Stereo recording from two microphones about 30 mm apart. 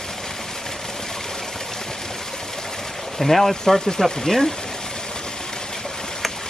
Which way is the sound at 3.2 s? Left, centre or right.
Centre.